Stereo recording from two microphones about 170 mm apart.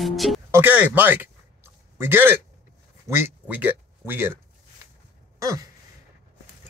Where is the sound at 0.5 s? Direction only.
10° right (ahead or behind).